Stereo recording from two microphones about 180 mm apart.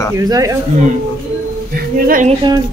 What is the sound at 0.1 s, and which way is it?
Speech, 20° right (ahead or behind).